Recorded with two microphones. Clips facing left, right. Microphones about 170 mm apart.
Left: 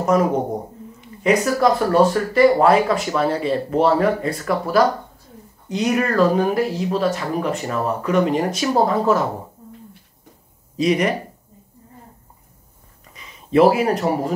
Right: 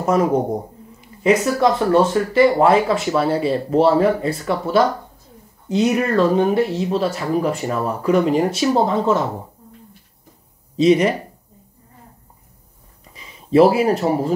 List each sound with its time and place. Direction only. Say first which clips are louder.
1.2 s speech: right 1 dB; 25° right (ahead or behind)
10.8 s speech: right 5 dB; 30° right (ahead or behind)
13.1 s speech: right 2 dB; 30° right (ahead or behind)